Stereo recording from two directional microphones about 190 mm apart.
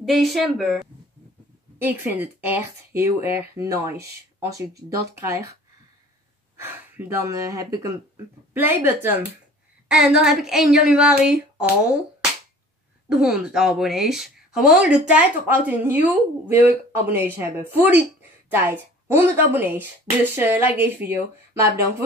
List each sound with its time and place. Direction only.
0.0 s speech: centre (ahead or behind)
1.8 s speech: 10° right (ahead or behind)
6.5 s speech: 10° right (ahead or behind)
13.2 s speech: 5° right (ahead or behind)